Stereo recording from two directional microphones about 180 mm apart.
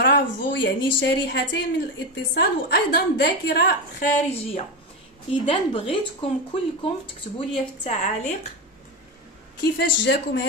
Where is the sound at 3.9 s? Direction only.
40° left (ahead or behind).